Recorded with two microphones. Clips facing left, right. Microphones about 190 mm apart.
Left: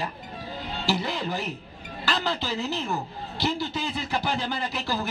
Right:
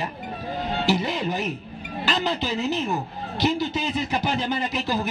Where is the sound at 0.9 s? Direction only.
20° right (ahead or behind).